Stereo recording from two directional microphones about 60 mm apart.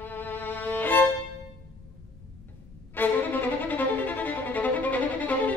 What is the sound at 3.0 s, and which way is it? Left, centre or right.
Violin, left.